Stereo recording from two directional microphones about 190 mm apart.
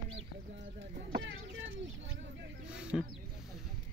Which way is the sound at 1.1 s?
70° right (ahead or behind).